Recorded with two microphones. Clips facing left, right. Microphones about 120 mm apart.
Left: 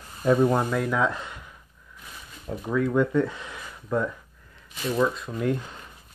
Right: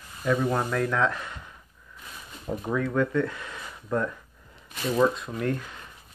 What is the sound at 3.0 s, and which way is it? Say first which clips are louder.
Speech: left 2 dB; 15° left (ahead or behind).